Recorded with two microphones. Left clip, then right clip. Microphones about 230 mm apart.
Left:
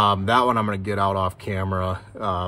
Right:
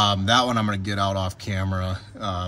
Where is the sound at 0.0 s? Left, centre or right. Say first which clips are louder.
Left 2 dB; centre.